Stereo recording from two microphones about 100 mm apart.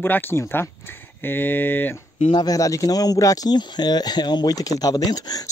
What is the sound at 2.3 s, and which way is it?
Speech, 40° left (ahead or behind).